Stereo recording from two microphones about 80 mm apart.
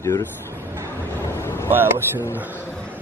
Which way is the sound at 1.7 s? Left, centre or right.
Right.